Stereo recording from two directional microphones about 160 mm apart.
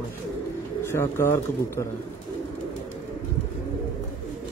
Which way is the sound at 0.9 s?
15° left (ahead or behind).